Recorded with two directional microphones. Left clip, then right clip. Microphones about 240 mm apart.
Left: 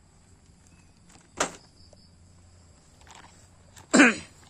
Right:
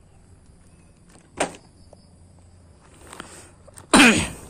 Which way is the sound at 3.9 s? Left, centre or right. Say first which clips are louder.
Right 5 dB; right.